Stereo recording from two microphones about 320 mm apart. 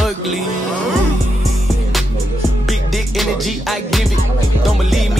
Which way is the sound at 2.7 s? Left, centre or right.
Centre.